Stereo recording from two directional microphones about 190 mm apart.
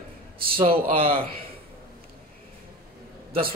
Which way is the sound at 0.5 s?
30° right (ahead or behind).